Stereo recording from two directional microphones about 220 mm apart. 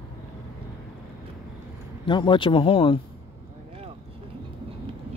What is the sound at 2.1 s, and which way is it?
Speech, 20° left (ahead or behind).